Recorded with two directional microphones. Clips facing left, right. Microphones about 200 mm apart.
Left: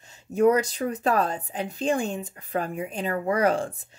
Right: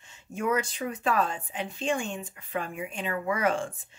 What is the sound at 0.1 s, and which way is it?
Speech, 40° left (ahead or behind).